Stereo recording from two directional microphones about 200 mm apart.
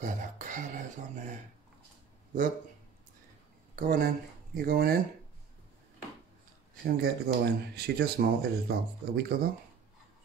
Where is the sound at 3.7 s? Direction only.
45° right (ahead or behind).